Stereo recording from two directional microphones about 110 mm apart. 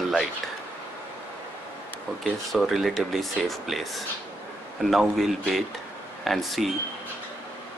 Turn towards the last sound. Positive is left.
turn(degrees=0)  # may be behind; listen again after turning